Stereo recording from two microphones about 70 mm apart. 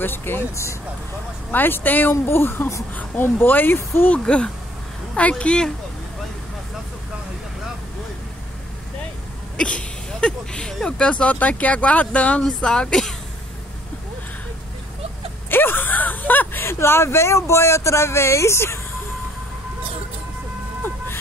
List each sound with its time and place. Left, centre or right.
0.0 s speech: left
1.5 s speech: left
4.1 s speech: centre
9.6 s speech: centre
15.5 s a sound: left
16.6 s speech: left